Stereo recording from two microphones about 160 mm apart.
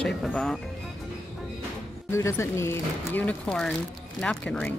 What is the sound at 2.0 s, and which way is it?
Speech, 15° left (ahead or behind).